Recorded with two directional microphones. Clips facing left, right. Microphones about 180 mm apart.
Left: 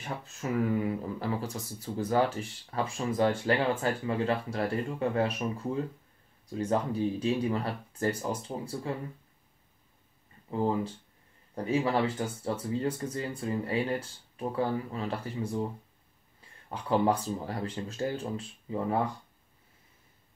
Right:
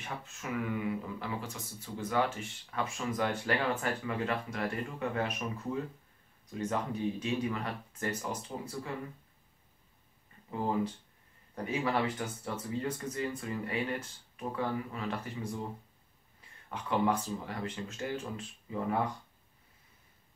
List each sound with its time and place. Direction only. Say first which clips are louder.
0.0 s speech: left 5 dB; 35° left (ahead or behind)
11.5 s speech: left 4 dB; 30° left (ahead or behind)